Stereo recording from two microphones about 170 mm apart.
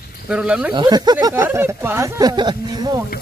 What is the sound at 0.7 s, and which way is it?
Speech, 25° right (ahead or behind).